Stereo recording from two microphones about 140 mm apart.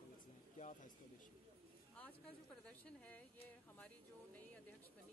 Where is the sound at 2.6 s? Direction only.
10° left (ahead or behind).